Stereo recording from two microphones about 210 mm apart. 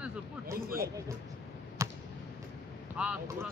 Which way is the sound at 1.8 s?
15° right (ahead or behind).